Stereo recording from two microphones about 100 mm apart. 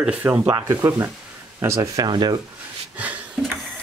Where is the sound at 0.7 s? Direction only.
25° right (ahead or behind); by 2.4 s 45° right (ahead or behind).